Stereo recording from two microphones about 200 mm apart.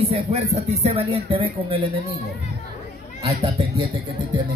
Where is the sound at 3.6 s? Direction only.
25° right (ahead or behind).